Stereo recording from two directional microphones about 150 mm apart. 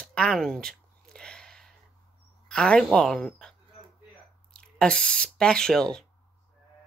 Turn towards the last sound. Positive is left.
turn(degrees=5)  # may be behind; listen again after turning